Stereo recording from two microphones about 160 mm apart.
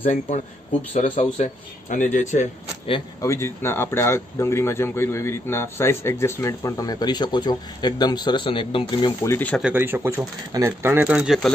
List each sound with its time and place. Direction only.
0.9 s speech: 50° left (ahead or behind)
3.2 s speech: 15° left (ahead or behind)
9.2 s speech: 10° left (ahead or behind)
9.6 s speech: 10° right (ahead or behind)